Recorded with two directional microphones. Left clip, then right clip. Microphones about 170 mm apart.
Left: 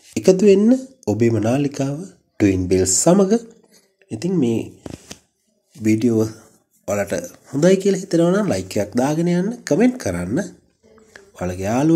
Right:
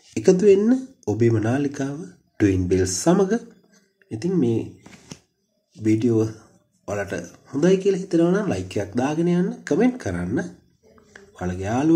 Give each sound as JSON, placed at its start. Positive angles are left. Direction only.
{"t": 0.1, "sound": "speech", "side_deg": 30}
{"t": 5.8, "sound": "a man's voice", "side_deg": 35}